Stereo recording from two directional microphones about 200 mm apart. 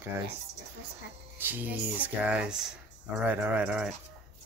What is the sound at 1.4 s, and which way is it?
Speech, 10° right (ahead or behind).